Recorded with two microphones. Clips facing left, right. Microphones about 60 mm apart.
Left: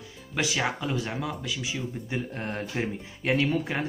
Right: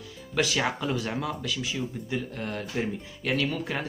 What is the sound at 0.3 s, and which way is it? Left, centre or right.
Speech, centre.